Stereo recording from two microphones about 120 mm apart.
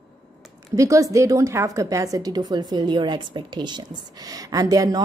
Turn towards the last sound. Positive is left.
turn(degrees=-30)  # may be behind; listen again after turning